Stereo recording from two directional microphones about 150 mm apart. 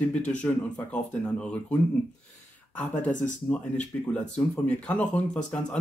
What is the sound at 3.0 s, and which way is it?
Speech, 10° left (ahead or behind).